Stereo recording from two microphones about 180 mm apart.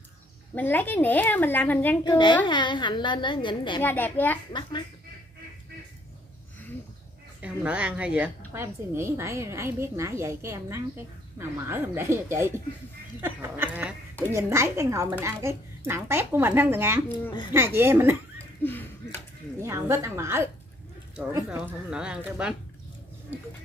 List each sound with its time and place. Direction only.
0.6 s a woman's voice: 10° left (ahead or behind)
2.0 s a woman's voice: 25° left (ahead or behind)
3.8 s a woman's voice: 10° left (ahead or behind)
4.5 s a woman's voice: 25° left (ahead or behind)
7.4 s a child's voice: 5° right (ahead or behind)
18.6 s speech: 10° left (ahead or behind)
19.6 s a child's voice: 15° right (ahead or behind)
21.5 s speech: 5° right (ahead or behind)